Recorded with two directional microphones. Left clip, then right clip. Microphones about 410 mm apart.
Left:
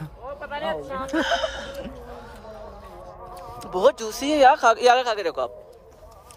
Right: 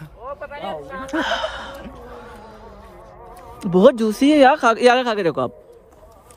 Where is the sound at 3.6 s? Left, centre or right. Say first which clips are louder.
Right 6 dB; centre.